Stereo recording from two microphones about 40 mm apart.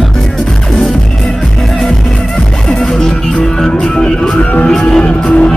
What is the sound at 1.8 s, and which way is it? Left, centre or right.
Music, centre.